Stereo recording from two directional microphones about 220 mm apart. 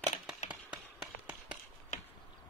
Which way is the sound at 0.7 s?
5° right (ahead or behind).